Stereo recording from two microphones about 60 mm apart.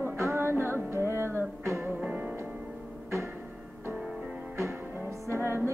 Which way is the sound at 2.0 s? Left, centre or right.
Right.